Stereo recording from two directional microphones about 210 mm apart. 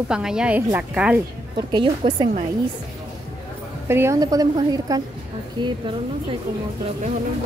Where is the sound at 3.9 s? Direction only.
15° right (ahead or behind).